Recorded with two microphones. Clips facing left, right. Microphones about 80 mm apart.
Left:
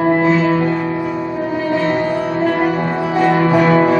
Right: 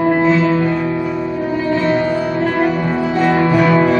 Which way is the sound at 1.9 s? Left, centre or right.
Centre.